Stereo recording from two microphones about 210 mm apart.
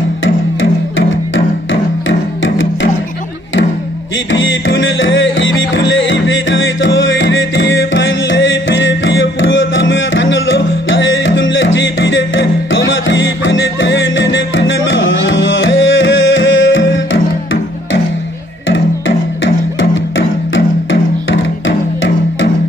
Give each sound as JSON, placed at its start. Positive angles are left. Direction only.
{"t": 0.2, "sound": "music", "side_deg": 65}
{"t": 4.3, "sound": "music", "side_deg": 65}
{"t": 18.7, "sound": "music", "side_deg": 60}